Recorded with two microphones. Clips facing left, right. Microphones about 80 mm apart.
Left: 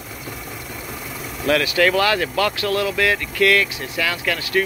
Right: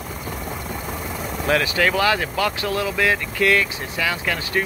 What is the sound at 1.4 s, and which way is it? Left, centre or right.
Speech, right.